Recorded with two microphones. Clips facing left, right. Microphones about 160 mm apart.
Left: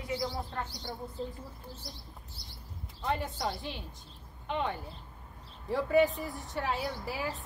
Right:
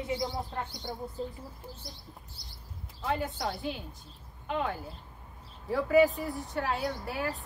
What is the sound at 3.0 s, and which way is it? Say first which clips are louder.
Speech: right 1 dB; centre (ahead or behind).